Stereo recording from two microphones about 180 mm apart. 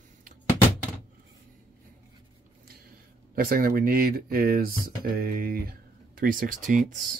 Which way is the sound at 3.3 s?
55° right (ahead or behind).